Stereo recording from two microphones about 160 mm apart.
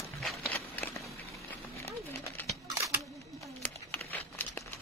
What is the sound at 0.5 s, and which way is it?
Walk, 15° left (ahead or behind).